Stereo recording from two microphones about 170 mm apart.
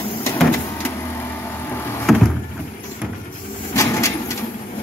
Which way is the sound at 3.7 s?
15° left (ahead or behind).